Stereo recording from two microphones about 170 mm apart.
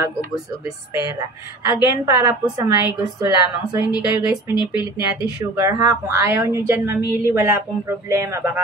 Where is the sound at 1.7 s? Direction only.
15° right (ahead or behind).